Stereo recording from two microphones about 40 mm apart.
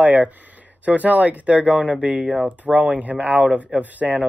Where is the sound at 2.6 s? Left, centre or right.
Right.